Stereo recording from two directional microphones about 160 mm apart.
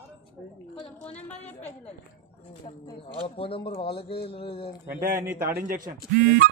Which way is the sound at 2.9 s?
35° left (ahead or behind).